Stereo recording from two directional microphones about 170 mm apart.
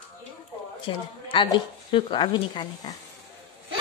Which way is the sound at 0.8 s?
30° left (ahead or behind).